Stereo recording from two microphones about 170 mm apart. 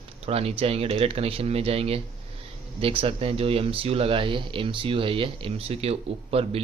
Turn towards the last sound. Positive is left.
turn(degrees=-35)  # may be behind; listen again after turning